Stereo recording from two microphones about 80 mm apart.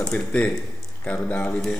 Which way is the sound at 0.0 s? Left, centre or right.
Centre.